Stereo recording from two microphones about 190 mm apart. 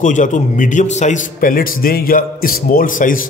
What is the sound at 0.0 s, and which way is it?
Speech, 40° left (ahead or behind).